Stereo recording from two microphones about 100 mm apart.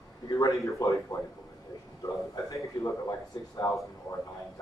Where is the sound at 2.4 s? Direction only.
30° left (ahead or behind).